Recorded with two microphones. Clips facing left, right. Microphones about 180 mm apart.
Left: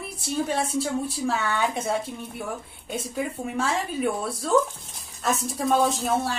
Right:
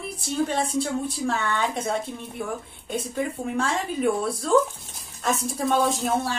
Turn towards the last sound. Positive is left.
turn(degrees=0)  # may be behind; listen again after turning